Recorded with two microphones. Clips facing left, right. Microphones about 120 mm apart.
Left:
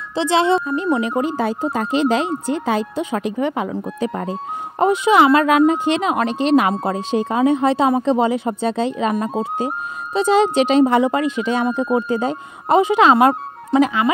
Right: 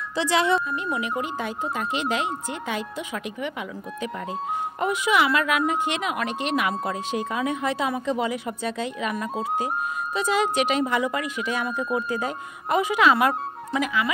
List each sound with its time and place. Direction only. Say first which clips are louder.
0.1 s speech: left 6 dB; 25° left (ahead or behind)